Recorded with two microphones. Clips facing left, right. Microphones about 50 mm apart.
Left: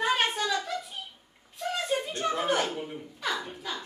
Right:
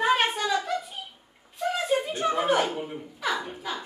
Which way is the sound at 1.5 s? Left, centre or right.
Centre.